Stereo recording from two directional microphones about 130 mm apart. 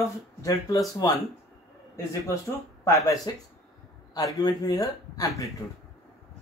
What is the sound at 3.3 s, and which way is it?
Speech, 30° left (ahead or behind).